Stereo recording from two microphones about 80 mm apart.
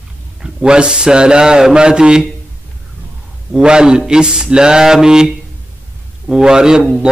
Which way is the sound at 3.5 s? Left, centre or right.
Centre.